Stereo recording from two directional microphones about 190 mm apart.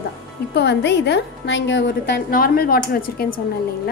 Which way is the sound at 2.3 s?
50° left (ahead or behind).